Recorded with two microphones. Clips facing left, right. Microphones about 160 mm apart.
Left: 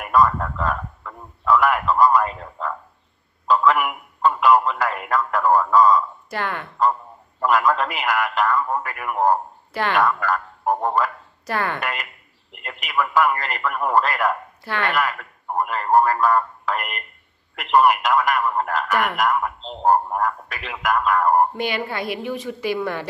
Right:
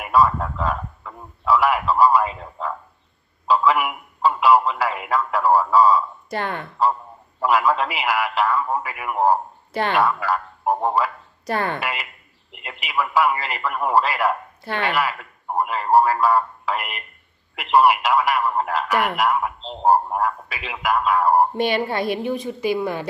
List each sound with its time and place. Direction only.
0.1 s a man's voice: 5° right (ahead or behind)
6.3 s speech: 25° right (ahead or behind)
6.8 s a man's voice: 5° right (ahead or behind)
9.8 s speech: 25° right (ahead or behind)
10.0 s a man's voice: 5° right (ahead or behind)
11.4 s speech: 25° right (ahead or behind)
11.8 s a man's voice: 5° right (ahead or behind)
14.6 s speech: 20° right (ahead or behind)
15.0 s speech: 5° right (ahead or behind)
18.9 s speech: 25° right (ahead or behind)
19.2 s speech: 10° right (ahead or behind)
21.6 s speech: 30° right (ahead or behind)